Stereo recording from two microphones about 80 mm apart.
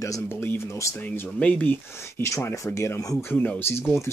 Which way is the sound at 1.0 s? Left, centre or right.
Left.